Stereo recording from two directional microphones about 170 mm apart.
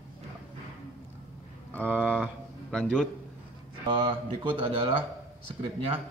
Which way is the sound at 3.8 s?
30° right (ahead or behind).